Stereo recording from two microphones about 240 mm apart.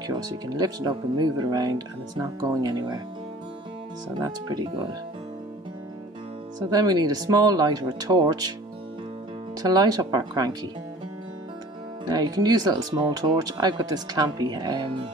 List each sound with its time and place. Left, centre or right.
0.0 s speech: centre
4.2 s speech: centre
6.7 s speech: centre
9.6 s speech: centre
12.1 s speech: centre